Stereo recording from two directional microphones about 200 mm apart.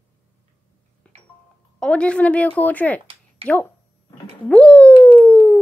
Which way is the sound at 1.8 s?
5° left (ahead or behind).